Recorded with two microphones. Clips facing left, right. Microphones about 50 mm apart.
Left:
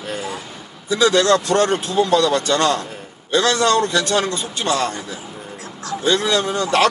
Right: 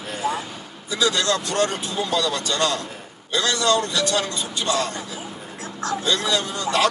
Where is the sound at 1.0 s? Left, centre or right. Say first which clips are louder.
Left 7 dB; left.